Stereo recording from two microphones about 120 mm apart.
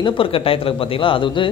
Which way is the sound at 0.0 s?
50° left (ahead or behind).